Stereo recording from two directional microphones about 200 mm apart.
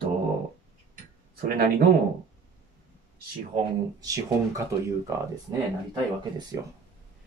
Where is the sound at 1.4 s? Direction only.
50° right (ahead or behind).